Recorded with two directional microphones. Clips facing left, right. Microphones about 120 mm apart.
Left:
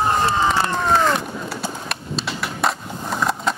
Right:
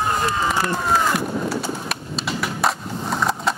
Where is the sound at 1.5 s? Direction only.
Centre (ahead or behind).